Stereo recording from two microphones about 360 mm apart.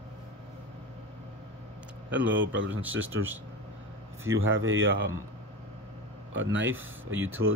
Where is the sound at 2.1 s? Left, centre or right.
Centre.